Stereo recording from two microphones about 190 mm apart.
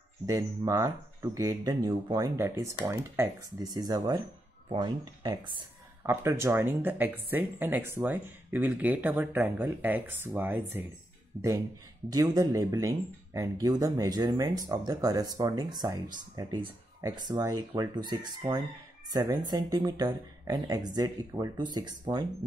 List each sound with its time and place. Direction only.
0.3 s speech: 15° right (ahead or behind)
12.1 s speech: 20° right (ahead or behind)